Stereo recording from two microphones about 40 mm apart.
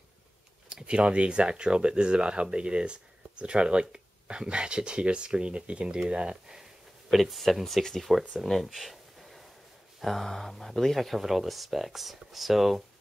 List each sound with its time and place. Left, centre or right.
0.7 s speech: right
7.1 s speech: centre
8.4 s a sound: centre
9.9 s speech: centre